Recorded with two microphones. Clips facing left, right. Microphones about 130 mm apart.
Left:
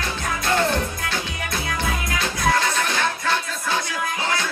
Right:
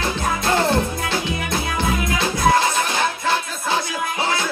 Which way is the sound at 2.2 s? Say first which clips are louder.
Right 4 dB; 25° right (ahead or behind).